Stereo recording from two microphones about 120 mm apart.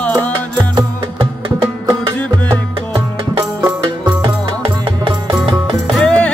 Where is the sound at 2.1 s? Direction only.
15° left (ahead or behind).